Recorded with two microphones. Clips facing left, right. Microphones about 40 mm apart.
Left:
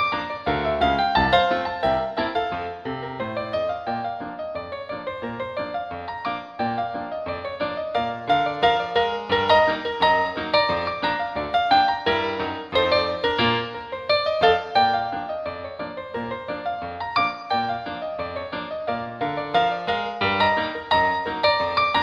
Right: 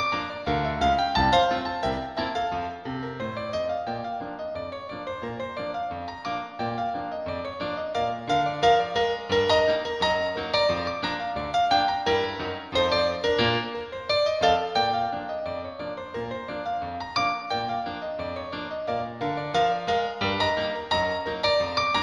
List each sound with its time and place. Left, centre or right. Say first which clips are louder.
0.1 s music: left 2 dB; left
5.6 s music: even; left
16.6 s music: left 1 dB; left
18.9 s music: left 1 dB; left